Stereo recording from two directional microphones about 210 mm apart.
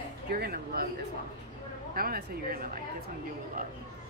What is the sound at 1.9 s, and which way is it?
Speech, 45° right (ahead or behind).